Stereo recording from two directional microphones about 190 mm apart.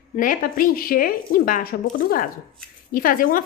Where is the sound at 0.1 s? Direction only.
45° left (ahead or behind).